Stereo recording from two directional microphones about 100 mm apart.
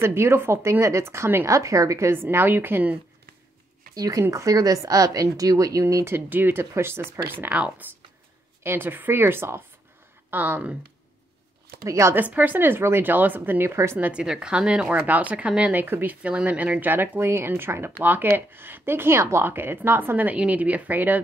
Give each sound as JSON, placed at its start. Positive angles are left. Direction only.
{"t": 0.0, "sound": "speech", "side_deg": -25}
{"t": 3.9, "sound": "speech", "side_deg": -35}
{"t": 6.1, "sound": "speech", "side_deg": -20}
{"t": 11.8, "sound": "speech", "side_deg": -30}
{"t": 12.2, "sound": "speech", "side_deg": -15}
{"t": 13.9, "sound": "speech", "side_deg": -15}